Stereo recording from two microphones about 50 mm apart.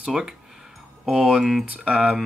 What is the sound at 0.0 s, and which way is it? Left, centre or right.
Speech, centre.